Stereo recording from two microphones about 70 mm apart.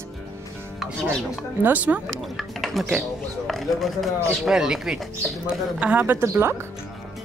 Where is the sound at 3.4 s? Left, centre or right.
Centre.